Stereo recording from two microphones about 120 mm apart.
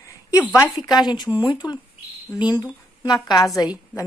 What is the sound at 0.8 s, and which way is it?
Speech, 35° left (ahead or behind).